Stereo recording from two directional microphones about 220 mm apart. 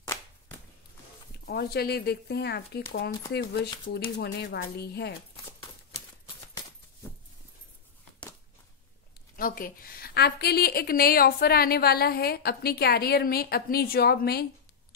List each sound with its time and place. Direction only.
1.4 s a woman's voice: 45° left (ahead or behind)
6.2 s a sound: 15° left (ahead or behind)
9.4 s a woman's voice: 40° left (ahead or behind)